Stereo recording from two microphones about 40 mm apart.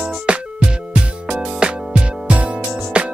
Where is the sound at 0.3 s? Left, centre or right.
Right.